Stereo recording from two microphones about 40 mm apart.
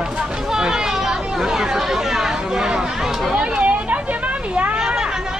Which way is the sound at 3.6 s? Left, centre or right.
Right.